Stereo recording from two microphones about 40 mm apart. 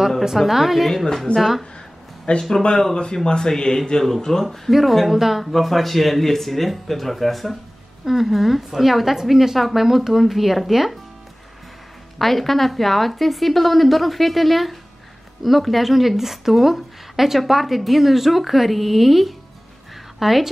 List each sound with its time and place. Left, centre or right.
0.2 s a woman's voice: centre
1.0 s speech: centre
2.3 s speech: left; by 11.0 s centre
12.2 s a woman's voice: centre